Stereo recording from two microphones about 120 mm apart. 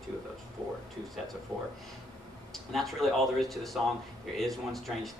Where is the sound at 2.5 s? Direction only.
Centre (ahead or behind).